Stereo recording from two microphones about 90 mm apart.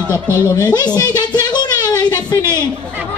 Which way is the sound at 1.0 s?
45° left (ahead or behind).